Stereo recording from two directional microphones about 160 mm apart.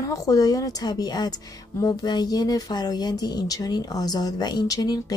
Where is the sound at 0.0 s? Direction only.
20° left (ahead or behind).